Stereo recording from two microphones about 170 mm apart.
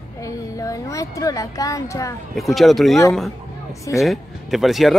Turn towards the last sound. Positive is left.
turn(degrees=0)  # may be behind; listen again after turning